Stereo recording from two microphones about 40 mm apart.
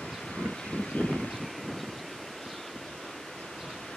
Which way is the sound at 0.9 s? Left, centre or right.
Left.